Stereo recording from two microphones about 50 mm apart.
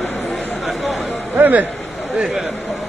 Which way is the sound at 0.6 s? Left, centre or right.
Centre.